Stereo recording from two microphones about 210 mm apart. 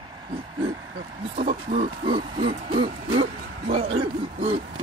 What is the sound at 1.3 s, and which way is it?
Speech, 40° right (ahead or behind).